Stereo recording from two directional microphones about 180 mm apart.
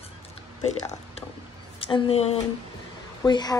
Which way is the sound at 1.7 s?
30° left (ahead or behind).